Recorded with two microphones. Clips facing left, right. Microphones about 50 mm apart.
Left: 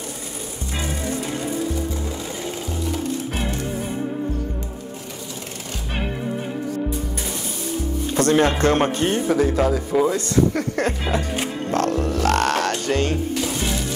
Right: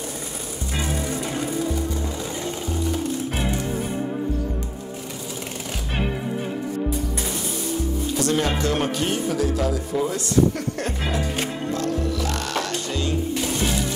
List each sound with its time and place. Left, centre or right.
0.7 s music: centre
8.2 s speech: left
11.7 s music: left
12.8 s speech: left
13.4 s music: centre